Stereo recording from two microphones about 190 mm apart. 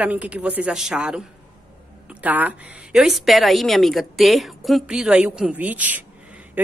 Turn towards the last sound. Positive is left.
turn(degrees=-10)  # may be behind; listen again after turning